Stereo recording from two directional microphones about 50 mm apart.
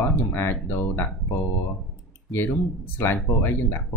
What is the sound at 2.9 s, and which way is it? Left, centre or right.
Speech, left.